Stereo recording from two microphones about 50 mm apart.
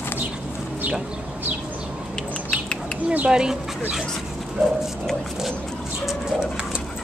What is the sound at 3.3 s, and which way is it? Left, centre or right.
Speech, centre.